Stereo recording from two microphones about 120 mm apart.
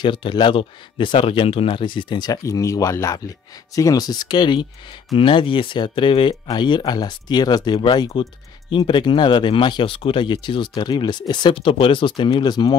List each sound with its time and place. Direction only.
0.0 s speech: 40° left (ahead or behind)